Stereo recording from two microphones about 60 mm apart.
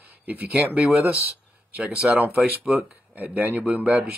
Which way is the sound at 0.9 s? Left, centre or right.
Right.